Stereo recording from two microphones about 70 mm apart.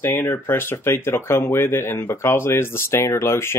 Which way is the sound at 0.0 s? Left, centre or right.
Left.